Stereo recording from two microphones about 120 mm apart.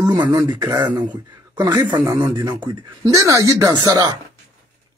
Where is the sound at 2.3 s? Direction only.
35° right (ahead or behind).